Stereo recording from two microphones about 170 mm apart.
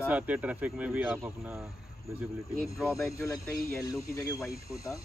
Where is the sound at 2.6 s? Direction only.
Centre (ahead or behind).